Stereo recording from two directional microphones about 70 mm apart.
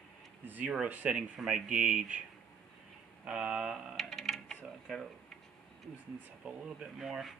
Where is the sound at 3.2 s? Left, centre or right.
Centre.